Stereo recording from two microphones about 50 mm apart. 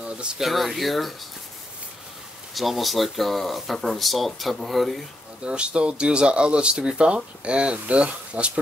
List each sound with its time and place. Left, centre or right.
0.0 s a sound: centre
0.4 s speech: centre
2.5 s speech: centre
5.4 s speech: right